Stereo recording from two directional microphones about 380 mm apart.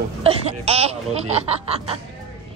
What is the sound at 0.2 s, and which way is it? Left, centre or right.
Speech, centre.